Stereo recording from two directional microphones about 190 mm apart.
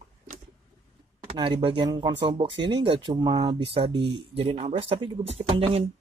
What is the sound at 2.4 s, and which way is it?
Speech, 70° right (ahead or behind).